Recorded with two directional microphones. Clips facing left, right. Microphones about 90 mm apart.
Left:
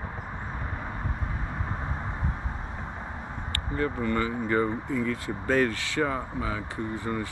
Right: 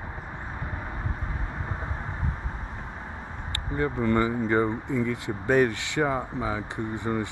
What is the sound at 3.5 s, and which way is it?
Speech, 20° right (ahead or behind).